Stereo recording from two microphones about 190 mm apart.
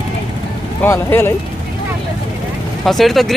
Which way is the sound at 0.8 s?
15° left (ahead or behind).